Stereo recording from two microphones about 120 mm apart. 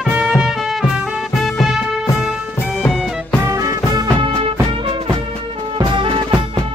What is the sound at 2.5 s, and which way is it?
Music, 15° left (ahead or behind).